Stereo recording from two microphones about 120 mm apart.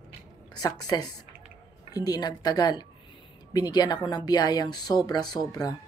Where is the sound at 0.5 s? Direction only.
35° left (ahead or behind).